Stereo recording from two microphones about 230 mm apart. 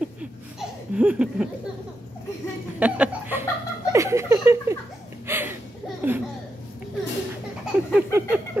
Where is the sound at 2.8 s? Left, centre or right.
Centre.